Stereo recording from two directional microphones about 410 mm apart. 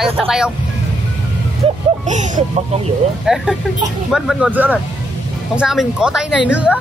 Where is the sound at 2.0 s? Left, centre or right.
Centre.